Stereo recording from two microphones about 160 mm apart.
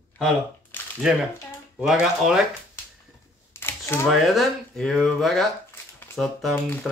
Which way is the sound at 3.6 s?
15° left (ahead or behind).